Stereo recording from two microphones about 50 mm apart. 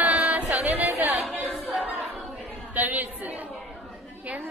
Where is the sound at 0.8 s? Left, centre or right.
Right.